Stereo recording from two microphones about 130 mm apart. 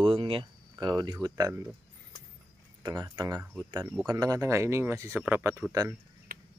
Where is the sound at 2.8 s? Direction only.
30° right (ahead or behind).